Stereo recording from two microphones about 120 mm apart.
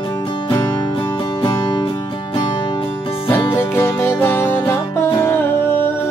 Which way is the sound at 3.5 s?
20° left (ahead or behind).